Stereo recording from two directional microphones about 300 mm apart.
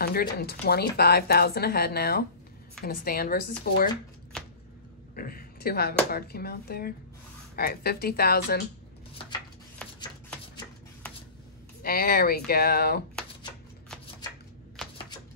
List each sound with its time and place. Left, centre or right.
0.0 s speech: left
5.1 s speech: left
10.5 s shuffle: centre
11.8 s speech: left